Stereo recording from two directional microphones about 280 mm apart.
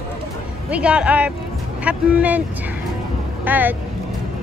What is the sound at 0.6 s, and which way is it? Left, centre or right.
A man's voice, centre.